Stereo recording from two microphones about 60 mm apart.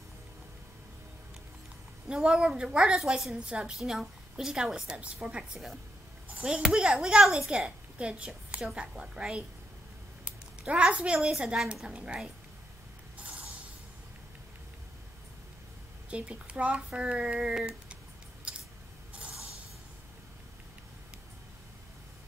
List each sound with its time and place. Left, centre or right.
2.0 s a woman's voice: centre
5.2 s speech: right
6.4 s a woman's voice: centre
10.7 s a woman's voice: centre
13.2 s music: right
16.1 s speech: centre
18.5 s scissors: centre